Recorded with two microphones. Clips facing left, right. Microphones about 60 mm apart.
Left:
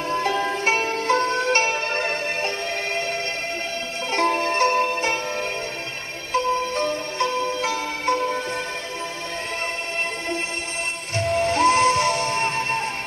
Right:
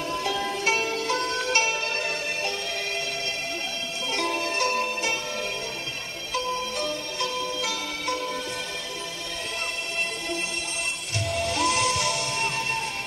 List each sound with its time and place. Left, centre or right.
0.1 s music: left
4.1 s music: left
6.3 s music: left
11.1 s music: left